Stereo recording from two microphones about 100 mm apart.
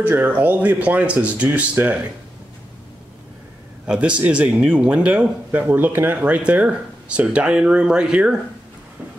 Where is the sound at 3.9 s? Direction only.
10° right (ahead or behind).